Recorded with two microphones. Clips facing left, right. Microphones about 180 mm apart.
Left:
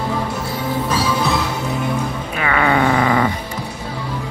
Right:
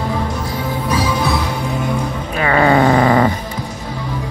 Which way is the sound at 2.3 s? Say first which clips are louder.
Right 4 dB; 35° right (ahead or behind).